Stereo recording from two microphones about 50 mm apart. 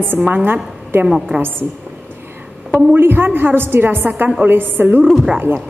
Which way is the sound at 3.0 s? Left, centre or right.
Right.